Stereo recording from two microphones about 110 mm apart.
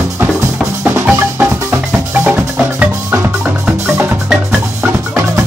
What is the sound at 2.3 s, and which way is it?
Music, 10° right (ahead or behind).